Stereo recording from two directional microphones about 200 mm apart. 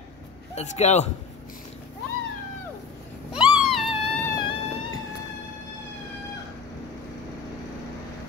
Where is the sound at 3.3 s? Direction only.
Centre (ahead or behind).